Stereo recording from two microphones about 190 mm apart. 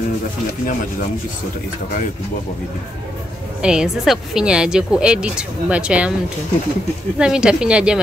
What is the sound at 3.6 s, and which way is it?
Speech, 5° right (ahead or behind).